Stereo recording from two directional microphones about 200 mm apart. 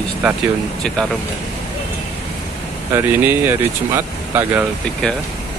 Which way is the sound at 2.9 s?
15° right (ahead or behind).